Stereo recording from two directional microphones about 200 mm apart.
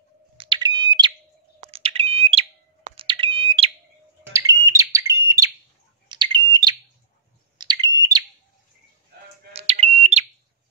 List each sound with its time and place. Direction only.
0.4 s a sound: 20° right (ahead or behind)
1.6 s bird: 30° right (ahead or behind)
4.3 s bird: 15° right (ahead or behind)
9.5 s smoke detector: 30° right (ahead or behind)